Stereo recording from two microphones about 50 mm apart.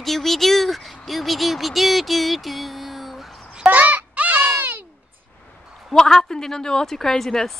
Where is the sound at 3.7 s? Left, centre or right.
Right.